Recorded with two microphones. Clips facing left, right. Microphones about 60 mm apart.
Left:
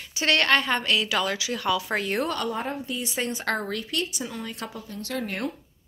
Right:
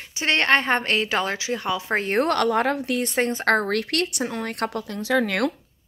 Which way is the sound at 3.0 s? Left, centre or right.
Right.